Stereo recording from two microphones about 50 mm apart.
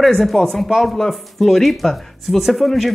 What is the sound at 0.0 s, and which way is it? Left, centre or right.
Speech, centre.